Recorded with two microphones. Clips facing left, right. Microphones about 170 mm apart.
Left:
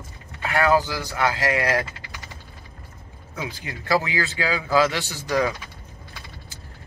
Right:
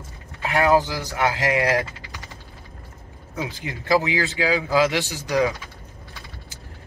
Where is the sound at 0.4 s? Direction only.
20° right (ahead or behind).